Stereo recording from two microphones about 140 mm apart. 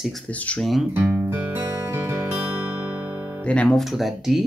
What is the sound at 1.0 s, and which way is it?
Music, 15° right (ahead or behind).